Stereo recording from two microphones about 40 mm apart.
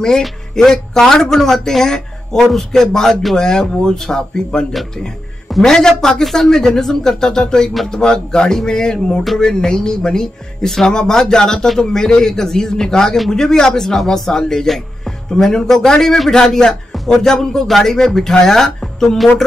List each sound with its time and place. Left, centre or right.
0.2 s a man's voice: centre